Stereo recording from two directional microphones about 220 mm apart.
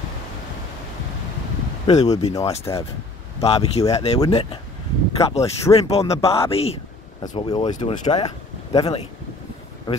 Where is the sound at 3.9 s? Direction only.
30° left (ahead or behind).